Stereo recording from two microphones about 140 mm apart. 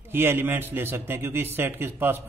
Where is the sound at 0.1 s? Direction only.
15° right (ahead or behind).